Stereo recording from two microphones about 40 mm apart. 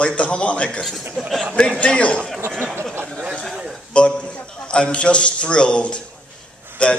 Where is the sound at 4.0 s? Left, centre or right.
Left.